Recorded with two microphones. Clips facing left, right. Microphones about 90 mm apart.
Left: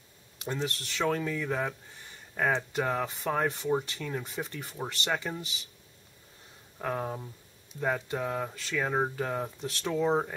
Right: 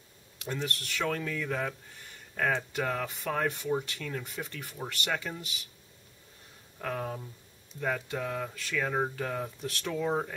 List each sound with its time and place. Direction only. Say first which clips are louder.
0.5 s speech: left 1 dB; 20° left (ahead or behind)
6.8 s speech: left 2 dB; 20° left (ahead or behind)